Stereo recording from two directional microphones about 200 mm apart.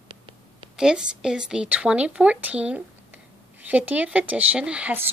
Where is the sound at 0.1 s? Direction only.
25° right (ahead or behind).